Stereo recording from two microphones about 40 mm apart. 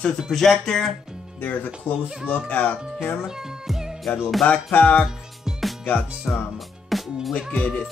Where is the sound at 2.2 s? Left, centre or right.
Left.